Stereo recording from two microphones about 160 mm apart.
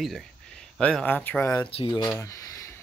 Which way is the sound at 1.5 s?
30° left (ahead or behind).